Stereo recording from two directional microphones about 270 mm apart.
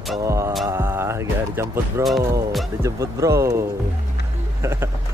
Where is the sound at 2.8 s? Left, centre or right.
Centre.